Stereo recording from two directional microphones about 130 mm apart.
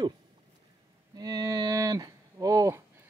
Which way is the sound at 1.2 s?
30° right (ahead or behind).